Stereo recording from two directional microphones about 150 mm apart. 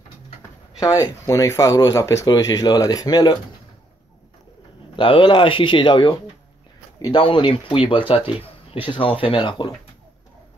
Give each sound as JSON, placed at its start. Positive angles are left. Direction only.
{"t": 0.7, "sound": "speech", "side_deg": 20}
{"t": 4.9, "sound": "speech", "side_deg": 35}